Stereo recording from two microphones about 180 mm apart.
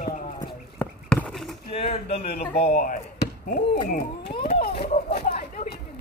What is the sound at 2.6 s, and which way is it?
Speech, 45° left (ahead or behind).